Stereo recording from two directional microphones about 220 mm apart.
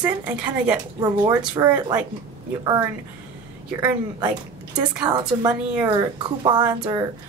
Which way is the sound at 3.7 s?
15° right (ahead or behind).